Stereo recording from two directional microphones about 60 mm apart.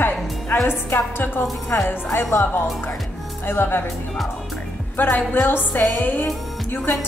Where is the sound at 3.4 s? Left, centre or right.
Left.